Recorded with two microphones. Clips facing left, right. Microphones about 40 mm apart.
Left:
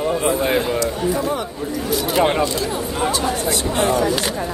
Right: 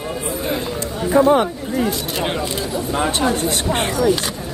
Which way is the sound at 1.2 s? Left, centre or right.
Right.